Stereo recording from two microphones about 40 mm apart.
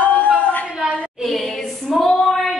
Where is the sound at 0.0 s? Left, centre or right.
Left.